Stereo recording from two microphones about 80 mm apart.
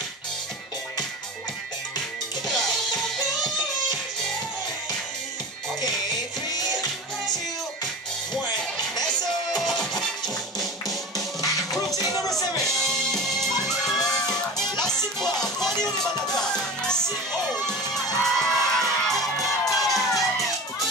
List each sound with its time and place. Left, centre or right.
2.4 s music: centre
9.8 s music: centre
11.9 s music: left
12.5 s music: centre
19.6 s crowd: centre